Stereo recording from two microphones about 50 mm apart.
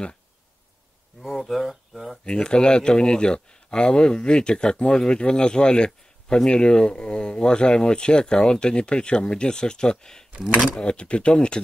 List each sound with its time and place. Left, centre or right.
1.2 s speech: centre
2.2 s speech: centre
10.4 s speech: centre
10.8 s speech: left